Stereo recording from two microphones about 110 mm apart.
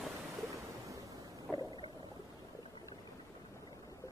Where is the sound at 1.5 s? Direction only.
10° left (ahead or behind).